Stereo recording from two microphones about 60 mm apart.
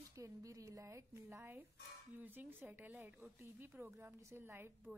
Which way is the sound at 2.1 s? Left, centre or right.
Right.